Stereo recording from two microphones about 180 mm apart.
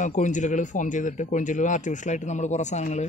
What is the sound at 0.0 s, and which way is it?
Speech, 45° left (ahead or behind).